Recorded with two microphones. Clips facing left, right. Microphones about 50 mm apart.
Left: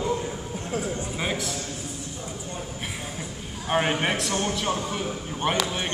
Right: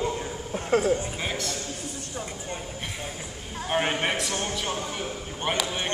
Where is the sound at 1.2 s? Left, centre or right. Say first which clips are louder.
Left 2 dB; centre.